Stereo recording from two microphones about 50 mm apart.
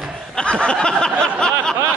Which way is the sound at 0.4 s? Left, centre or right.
Centre.